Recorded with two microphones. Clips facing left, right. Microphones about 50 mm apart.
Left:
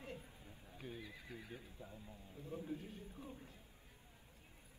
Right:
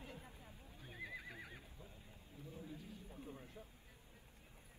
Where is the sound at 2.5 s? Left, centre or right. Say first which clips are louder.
Left 7 dB; left.